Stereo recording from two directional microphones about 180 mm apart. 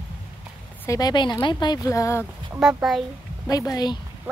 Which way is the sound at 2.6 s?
5° right (ahead or behind).